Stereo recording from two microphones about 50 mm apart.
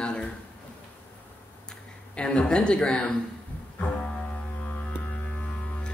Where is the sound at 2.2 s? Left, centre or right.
Left.